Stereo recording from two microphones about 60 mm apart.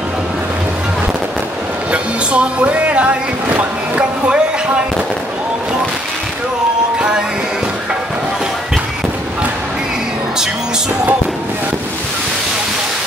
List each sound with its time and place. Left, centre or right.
1.9 s speech: right
7.0 s music: centre